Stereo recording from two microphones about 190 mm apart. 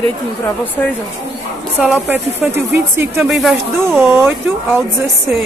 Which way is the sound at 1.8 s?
5° right (ahead or behind).